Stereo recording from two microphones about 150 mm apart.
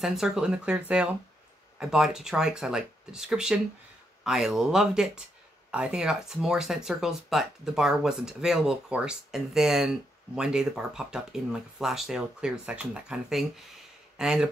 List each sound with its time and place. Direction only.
0.0 s speech: centre (ahead or behind)